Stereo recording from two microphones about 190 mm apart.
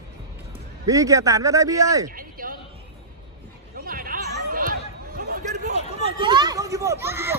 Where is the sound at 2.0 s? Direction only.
50° right (ahead or behind).